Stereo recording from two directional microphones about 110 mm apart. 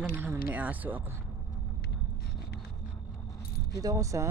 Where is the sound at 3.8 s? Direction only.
30° right (ahead or behind).